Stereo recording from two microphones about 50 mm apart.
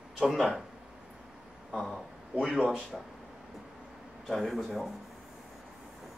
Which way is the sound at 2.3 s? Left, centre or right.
Centre.